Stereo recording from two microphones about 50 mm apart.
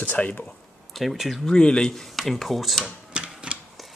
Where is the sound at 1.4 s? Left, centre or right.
Centre.